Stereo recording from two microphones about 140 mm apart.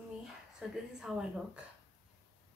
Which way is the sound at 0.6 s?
5° right (ahead or behind).